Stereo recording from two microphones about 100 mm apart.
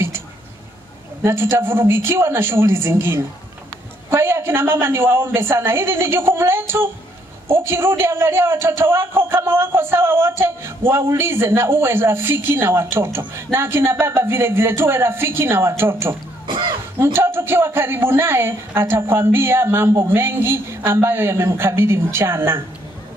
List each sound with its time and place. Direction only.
1.2 s a woman's voice: 25° right (ahead or behind)
16.4 s a sound: 55° right (ahead or behind)
17.0 s a woman's voice: 25° right (ahead or behind)